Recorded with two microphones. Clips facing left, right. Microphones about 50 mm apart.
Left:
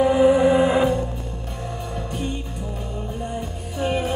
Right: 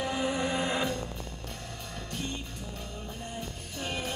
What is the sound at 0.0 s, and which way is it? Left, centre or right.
Music, centre.